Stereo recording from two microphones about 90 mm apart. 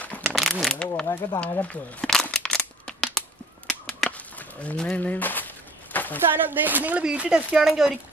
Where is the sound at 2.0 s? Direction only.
5° left (ahead or behind).